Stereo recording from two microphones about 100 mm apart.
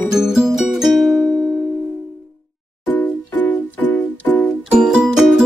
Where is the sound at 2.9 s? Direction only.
15° left (ahead or behind).